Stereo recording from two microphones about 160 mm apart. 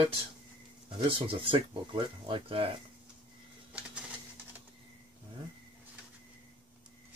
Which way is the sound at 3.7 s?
5° right (ahead or behind).